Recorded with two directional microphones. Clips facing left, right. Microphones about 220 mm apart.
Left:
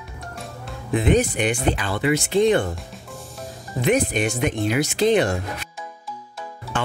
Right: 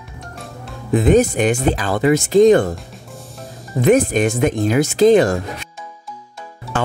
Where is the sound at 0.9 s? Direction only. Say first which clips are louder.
Right 6 dB; 40° right (ahead or behind).